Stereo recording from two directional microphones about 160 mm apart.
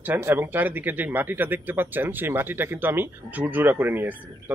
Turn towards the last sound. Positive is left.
turn(degrees=-10)  # may be behind; listen again after turning